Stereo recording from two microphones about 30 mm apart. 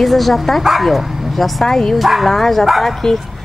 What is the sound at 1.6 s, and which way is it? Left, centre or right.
Speech, centre.